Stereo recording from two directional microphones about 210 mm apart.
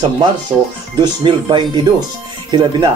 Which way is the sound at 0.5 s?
10° right (ahead or behind).